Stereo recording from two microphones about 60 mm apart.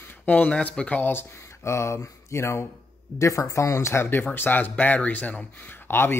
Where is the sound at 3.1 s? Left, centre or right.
Left.